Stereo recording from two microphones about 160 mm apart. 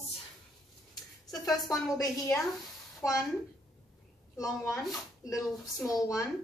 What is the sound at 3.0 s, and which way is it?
Speech, 20° left (ahead or behind).